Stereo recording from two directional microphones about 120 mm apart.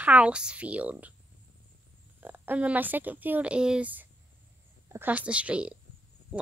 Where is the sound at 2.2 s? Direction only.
15° right (ahead or behind).